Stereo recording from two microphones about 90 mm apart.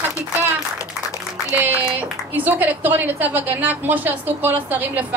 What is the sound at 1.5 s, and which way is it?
A woman's voice, 20° right (ahead or behind).